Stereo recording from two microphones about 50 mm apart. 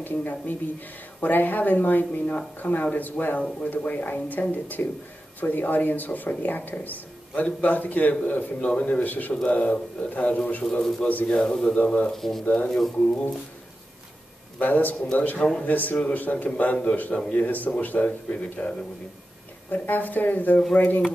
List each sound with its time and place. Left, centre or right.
0.0 s a man's voice: left; by 11.1 s centre
11.1 s speech: left
11.3 s mantra: centre
11.8 s speech: left
12.1 s speech: centre
12.6 s mantra: centre
14.6 s speech: left
19.7 s speech: left